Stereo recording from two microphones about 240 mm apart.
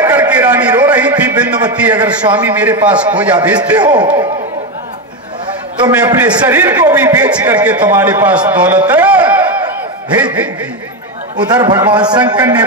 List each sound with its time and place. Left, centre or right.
0.0 s a sound: centre
1.7 s a man's voice: centre
5.9 s a man's voice: centre
11.4 s a man's voice: centre